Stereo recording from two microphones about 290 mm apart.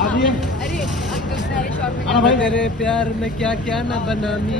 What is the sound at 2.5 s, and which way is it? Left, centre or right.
Speech, centre.